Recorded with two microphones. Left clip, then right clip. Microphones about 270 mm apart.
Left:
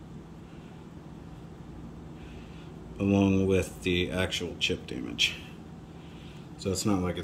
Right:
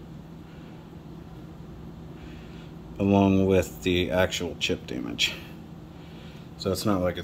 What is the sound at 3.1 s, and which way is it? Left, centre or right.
Speech, centre.